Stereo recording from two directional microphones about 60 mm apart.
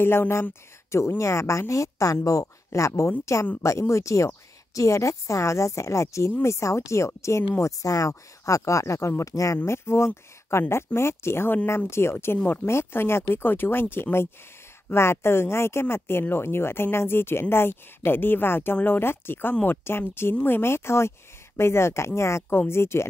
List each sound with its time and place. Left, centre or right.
0.0 s a woman's voice: left
9.7 s speech: left